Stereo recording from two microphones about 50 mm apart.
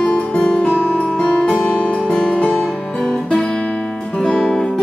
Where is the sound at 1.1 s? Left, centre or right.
Centre.